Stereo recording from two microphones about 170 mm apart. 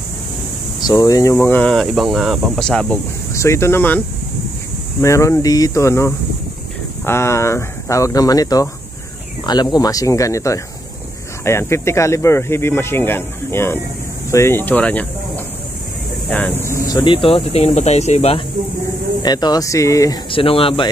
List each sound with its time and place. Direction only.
0.8 s speech: 20° left (ahead or behind)
3.3 s speech: 15° left (ahead or behind)
5.0 s speech: 15° left (ahead or behind)
16.3 s speech: 10° left (ahead or behind); by 18.4 s 40° left (ahead or behind)
19.2 s speech: 25° left (ahead or behind)
20.2 s speech: 30° left (ahead or behind)